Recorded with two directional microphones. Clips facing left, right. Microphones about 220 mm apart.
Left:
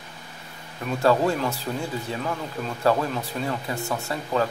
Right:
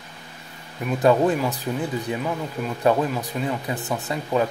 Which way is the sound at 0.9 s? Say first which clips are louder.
Right 3 dB; 20° right (ahead or behind).